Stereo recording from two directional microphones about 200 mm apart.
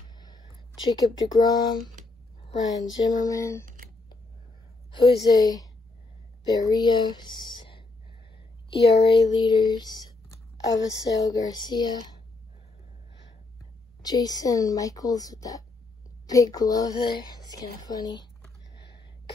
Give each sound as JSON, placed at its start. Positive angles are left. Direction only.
{"t": 0.1, "sound": "a sound", "side_deg": 20}
{"t": 0.8, "sound": "a woman's voice", "side_deg": 20}
{"t": 3.6, "sound": "computer keyboard", "side_deg": -40}
{"t": 4.9, "sound": "a woman's voice", "side_deg": 20}
{"t": 9.3, "sound": "a woman's voice", "side_deg": 20}
{"t": 14.0, "sound": "a woman's voice", "side_deg": 20}